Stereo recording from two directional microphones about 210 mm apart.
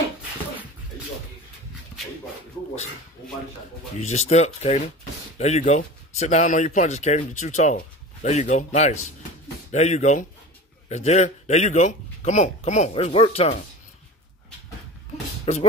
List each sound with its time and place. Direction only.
4.0 s speech: 30° left (ahead or behind)
15.5 s speech: 30° left (ahead or behind)